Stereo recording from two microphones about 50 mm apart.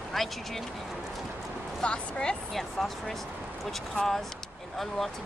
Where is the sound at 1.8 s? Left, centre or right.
Centre.